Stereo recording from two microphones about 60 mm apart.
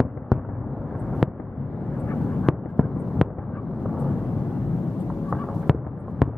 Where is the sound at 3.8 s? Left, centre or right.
Centre.